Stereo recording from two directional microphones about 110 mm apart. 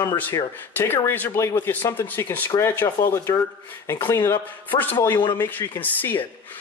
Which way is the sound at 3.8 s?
25° left (ahead or behind).